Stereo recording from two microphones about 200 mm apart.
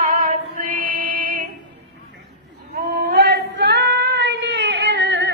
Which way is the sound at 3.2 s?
55° right (ahead or behind).